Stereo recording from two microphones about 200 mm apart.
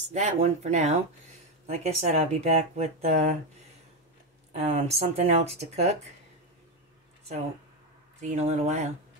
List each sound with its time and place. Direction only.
0.1 s speech: 35° right (ahead or behind)
4.5 s speech: 35° right (ahead or behind)
8.2 s speech: 35° right (ahead or behind)